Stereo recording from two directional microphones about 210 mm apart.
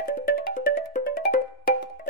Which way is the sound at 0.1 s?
45° left (ahead or behind).